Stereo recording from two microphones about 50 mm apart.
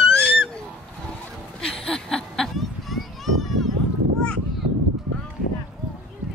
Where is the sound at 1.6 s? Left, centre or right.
Centre.